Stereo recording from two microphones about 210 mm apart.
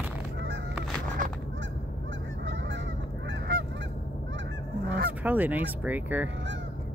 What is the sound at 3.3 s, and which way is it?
Goose, 45° right (ahead or behind).